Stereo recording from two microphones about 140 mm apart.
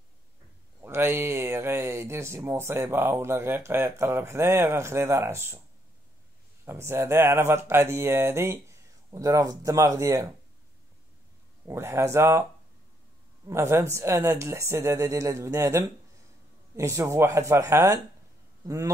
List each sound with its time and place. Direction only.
0.8 s speech: 15° right (ahead or behind)
6.6 s speech: 15° right (ahead or behind)
11.6 s speech: 20° right (ahead or behind)
13.5 s speech: 20° right (ahead or behind)